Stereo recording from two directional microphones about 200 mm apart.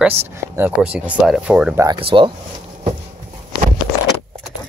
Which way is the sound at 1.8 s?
25° right (ahead or behind).